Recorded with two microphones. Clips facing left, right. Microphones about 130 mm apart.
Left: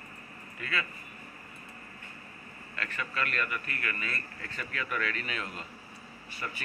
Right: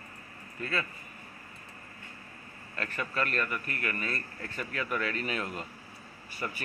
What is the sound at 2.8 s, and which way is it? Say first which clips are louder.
Speech: right 2 dB; 40° right (ahead or behind).